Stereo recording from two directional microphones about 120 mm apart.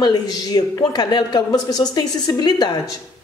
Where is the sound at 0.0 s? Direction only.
35° left (ahead or behind).